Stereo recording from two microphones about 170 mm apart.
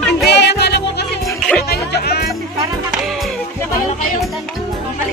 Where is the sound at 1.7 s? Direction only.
70° left (ahead or behind).